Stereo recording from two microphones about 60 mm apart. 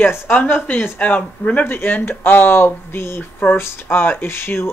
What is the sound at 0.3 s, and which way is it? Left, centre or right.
Speech, left.